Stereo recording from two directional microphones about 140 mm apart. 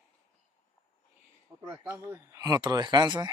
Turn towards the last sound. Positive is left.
turn(degrees=-30)  # may be behind; listen again after turning